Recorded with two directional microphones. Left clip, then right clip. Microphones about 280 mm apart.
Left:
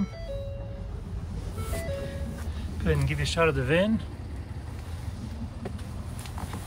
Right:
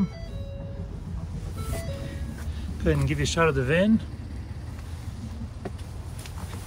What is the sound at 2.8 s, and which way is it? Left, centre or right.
Speech, centre.